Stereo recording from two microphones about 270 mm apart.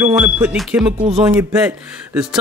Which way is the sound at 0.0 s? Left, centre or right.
Centre.